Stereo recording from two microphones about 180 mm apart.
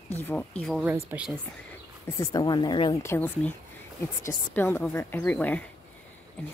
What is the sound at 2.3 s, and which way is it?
Speech, 25° left (ahead or behind).